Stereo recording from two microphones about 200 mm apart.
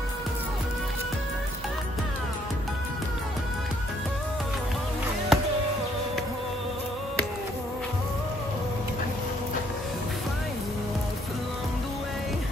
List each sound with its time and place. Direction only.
5.3 s music: centre (ahead or behind)